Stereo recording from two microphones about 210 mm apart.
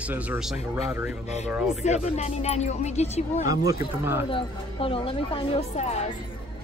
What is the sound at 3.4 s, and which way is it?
Speech, 15° right (ahead or behind).